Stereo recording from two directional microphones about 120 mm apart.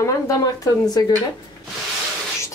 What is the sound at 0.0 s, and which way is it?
Speech, 25° left (ahead or behind).